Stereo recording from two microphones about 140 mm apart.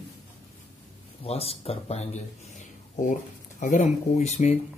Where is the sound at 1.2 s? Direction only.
45° left (ahead or behind).